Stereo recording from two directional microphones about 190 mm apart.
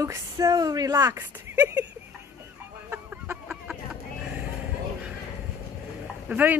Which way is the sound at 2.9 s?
10° right (ahead or behind).